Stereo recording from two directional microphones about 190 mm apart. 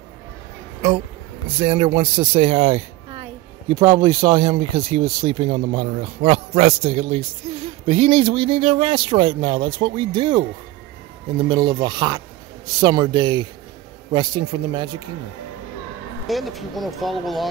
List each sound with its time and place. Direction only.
1.6 s a woman's voice: 30° right (ahead or behind)
16.3 s speech: centre (ahead or behind)